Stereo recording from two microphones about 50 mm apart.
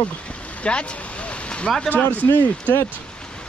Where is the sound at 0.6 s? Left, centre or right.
Left.